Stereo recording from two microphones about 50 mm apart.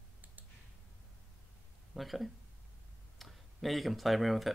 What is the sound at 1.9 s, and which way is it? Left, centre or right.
Speech, centre.